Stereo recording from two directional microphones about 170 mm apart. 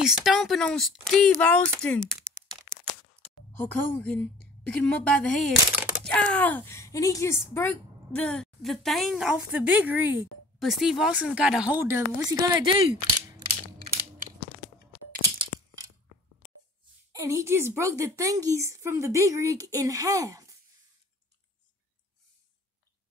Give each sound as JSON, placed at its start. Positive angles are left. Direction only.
{"t": 0.0, "sound": "speech", "side_deg": 0}
{"t": 1.4, "sound": "a sound", "side_deg": 5}
{"t": 3.5, "sound": "a woman's voice", "side_deg": 10}
{"t": 15.3, "sound": "crushing", "side_deg": -30}
{"t": 17.1, "sound": "a woman's voice", "side_deg": -15}